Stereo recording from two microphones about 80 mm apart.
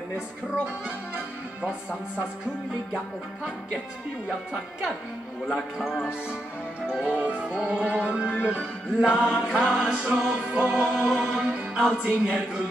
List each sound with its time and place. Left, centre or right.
0.8 s music: centre
5.5 s speech: centre
6.9 s music: centre